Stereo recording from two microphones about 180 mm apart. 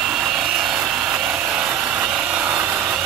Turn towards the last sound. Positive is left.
turn(degrees=-10)  # may be behind; listen again after turning